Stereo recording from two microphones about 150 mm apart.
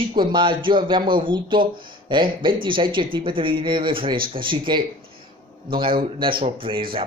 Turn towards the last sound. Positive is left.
turn(degrees=-35)  # may be behind; listen again after turning